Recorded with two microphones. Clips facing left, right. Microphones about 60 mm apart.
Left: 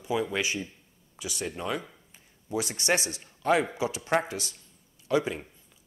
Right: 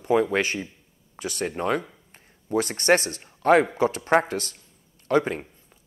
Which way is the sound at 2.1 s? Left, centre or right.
Right.